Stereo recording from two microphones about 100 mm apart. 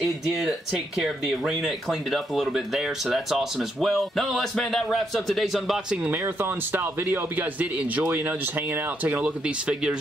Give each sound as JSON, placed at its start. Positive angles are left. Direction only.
{"t": 0.0, "sound": "speech", "side_deg": 0}
{"t": 6.0, "sound": "speech", "side_deg": -20}